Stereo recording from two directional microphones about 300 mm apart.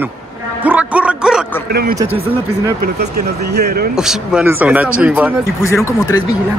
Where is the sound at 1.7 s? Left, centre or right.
Right.